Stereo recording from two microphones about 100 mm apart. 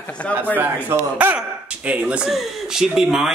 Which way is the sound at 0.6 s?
20° right (ahead or behind).